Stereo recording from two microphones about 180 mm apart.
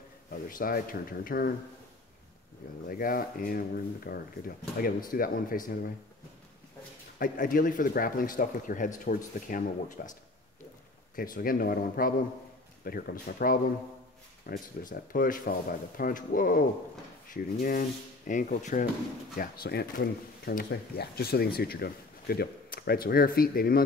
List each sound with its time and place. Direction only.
0.3 s speech: 50° left (ahead or behind)
2.9 s speech: 50° left (ahead or behind)
7.2 s speech: 50° left (ahead or behind)
11.1 s speech: 55° left (ahead or behind)
19.3 s speech: 55° left (ahead or behind)